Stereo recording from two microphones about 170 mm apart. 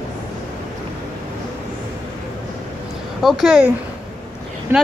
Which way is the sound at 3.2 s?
Centre (ahead or behind).